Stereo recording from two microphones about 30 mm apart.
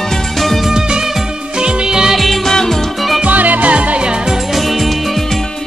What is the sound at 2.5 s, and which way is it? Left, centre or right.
Music, centre.